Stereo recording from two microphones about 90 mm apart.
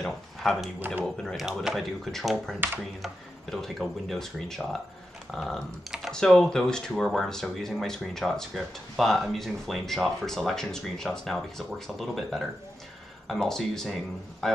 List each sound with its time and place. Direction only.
0.0 s a sound: 5° left (ahead or behind)
0.7 s speech: 20° right (ahead or behind)
1.0 s a man's voice: 5° left (ahead or behind)